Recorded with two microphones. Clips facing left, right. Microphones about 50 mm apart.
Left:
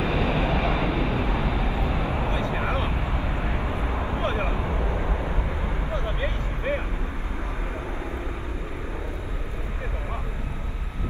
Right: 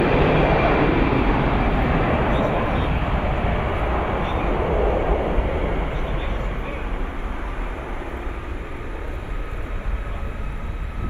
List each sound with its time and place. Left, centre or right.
0.0 s vehicle: right